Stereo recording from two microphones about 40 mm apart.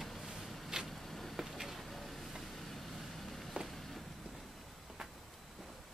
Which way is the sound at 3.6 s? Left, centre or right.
Right.